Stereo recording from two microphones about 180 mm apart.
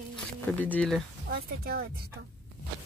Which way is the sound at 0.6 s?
10° left (ahead or behind).